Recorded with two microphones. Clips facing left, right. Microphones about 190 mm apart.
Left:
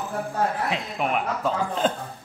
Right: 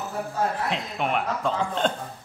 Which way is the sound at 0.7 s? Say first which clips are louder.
Left 1 dB; centre (ahead or behind).